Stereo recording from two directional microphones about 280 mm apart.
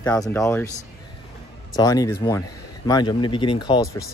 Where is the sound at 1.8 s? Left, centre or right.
Centre.